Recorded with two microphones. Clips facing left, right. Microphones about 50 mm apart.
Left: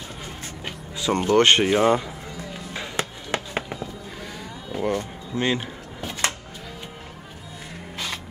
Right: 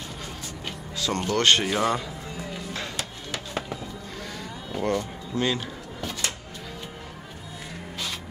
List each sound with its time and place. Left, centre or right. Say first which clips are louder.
0.7 s speech: left 4 dB; left
3.0 s music: left 6 dB; left
4.4 s a sound: left 2 dB; centre
5.4 s music: left 2 dB; left